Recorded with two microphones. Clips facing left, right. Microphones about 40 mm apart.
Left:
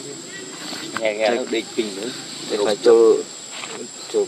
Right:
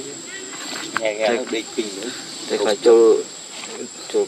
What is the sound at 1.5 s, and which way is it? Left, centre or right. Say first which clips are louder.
Speech: left 2 dB; centre.